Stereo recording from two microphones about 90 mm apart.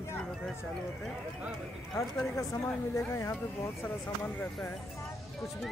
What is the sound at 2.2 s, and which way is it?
Speech, 35° left (ahead or behind).